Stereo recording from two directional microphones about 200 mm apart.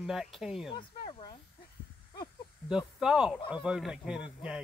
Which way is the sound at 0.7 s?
25° left (ahead or behind).